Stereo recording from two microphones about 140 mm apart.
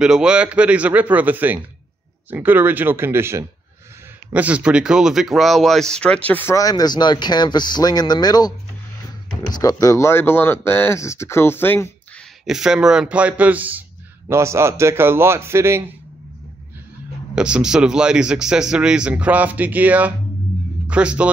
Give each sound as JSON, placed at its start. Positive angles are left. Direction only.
{"t": 0.0, "sound": "a man's voice", "side_deg": -5}
{"t": 6.5, "sound": "speech", "side_deg": 25}
{"t": 12.4, "sound": "a man's voice", "side_deg": -5}
{"t": 17.4, "sound": "a man's voice", "side_deg": -5}